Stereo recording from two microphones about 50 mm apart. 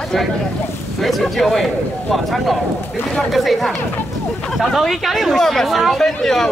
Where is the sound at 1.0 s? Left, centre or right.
Centre.